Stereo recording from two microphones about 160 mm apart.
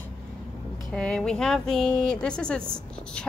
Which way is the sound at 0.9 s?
5° left (ahead or behind).